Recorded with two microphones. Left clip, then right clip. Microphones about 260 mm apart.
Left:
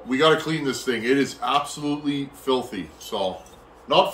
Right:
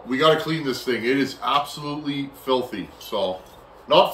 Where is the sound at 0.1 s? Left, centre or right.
Centre.